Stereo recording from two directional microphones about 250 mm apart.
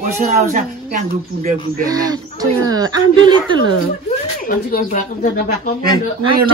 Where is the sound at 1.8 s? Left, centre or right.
Centre.